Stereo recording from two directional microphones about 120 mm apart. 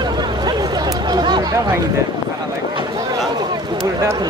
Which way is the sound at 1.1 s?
40° right (ahead or behind).